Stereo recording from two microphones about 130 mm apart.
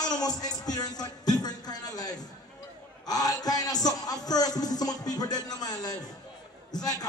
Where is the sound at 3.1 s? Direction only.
30° left (ahead or behind).